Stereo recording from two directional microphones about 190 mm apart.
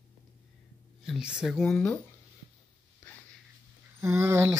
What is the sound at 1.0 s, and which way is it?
Speech, 5° right (ahead or behind).